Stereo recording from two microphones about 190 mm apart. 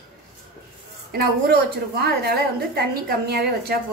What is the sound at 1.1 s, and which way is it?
A woman's voice, 55° right (ahead or behind).